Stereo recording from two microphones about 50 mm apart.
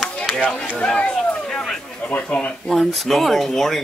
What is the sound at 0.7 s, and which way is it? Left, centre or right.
Speech, centre.